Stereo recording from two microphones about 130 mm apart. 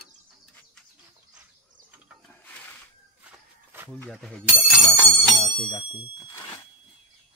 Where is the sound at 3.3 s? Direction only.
10° right (ahead or behind).